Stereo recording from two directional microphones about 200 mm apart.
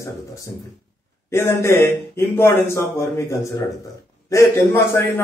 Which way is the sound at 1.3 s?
15° left (ahead or behind).